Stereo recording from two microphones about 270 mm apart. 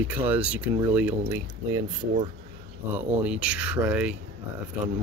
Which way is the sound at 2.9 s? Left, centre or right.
Centre.